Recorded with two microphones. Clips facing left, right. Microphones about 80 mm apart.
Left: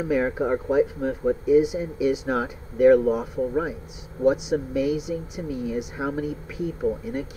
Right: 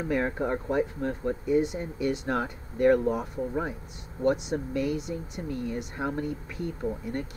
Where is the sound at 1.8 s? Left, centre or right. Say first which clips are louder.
Left 6 dB; left.